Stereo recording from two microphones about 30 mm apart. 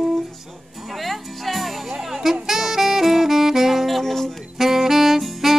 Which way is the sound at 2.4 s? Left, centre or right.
Centre.